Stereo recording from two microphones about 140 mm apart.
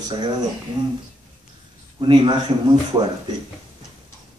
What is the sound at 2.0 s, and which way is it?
Speech, 35° right (ahead or behind).